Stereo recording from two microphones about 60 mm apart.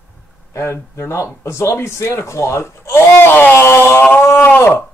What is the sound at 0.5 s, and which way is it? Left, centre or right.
Speech, left.